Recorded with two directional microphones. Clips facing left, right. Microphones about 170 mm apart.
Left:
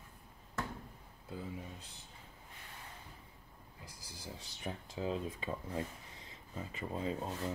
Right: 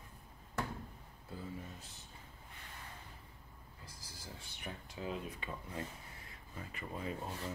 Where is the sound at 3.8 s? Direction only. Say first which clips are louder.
Left 4 dB; 15° left (ahead or behind).